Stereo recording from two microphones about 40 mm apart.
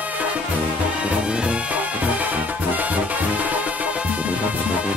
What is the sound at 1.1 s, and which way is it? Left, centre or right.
Music, right.